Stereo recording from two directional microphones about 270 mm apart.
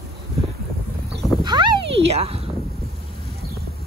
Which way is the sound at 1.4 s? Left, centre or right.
Centre.